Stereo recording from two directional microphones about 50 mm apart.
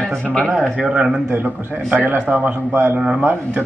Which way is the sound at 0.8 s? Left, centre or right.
Centre.